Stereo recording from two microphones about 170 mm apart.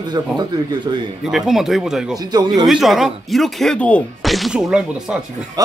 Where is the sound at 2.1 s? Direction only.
25° right (ahead or behind).